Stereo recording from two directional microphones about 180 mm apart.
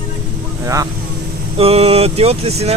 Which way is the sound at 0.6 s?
20° right (ahead or behind).